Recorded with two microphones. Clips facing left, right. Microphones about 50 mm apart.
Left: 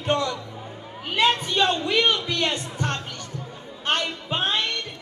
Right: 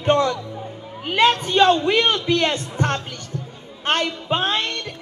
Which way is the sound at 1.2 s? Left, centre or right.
Right.